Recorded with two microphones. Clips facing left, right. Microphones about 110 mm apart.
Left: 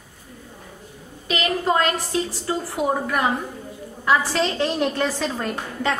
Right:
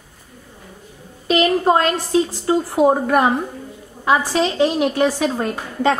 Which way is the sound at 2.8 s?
40° right (ahead or behind).